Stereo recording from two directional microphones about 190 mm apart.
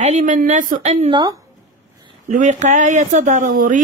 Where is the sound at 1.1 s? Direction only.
25° right (ahead or behind).